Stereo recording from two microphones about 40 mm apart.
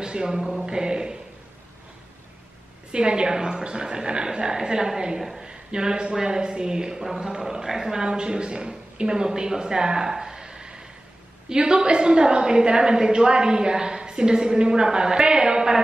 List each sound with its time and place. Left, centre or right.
0.0 s a woman's voice: centre
2.9 s a man's voice: right
10.1 s a sound: centre
11.4 s a woman's voice: centre